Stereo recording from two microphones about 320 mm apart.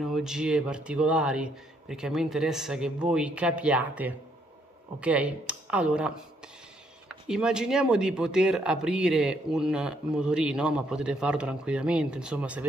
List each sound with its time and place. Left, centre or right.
0.0 s speech: centre
7.2 s speech: centre